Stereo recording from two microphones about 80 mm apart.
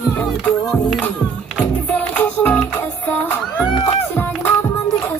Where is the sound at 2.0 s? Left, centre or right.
Centre.